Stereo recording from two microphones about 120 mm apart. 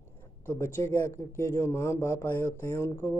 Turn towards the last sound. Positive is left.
turn(degrees=20)  # may be behind; listen again after turning